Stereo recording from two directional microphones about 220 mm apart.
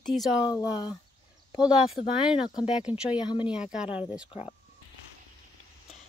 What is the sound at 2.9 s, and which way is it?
Speech, 5° right (ahead or behind).